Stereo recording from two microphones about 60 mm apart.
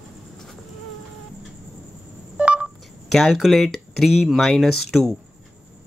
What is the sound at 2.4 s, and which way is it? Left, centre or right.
Telephone dialing, right.